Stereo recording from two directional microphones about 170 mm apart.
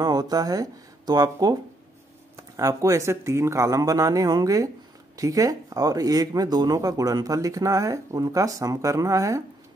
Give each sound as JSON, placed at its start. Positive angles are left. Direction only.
{"t": 0.0, "sound": "speech", "side_deg": -25}